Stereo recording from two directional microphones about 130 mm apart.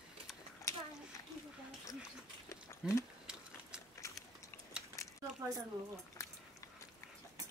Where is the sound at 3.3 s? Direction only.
5° right (ahead or behind).